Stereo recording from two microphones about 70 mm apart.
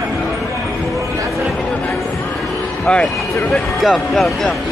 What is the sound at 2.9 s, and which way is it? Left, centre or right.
A man's voice, centre.